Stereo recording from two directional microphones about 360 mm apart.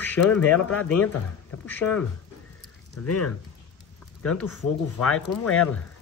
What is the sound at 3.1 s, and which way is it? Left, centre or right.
Speech, left.